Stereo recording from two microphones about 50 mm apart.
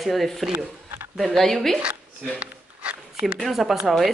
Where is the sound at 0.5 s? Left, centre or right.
Right.